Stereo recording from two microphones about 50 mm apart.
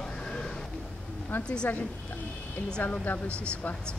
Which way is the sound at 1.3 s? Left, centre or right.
Left.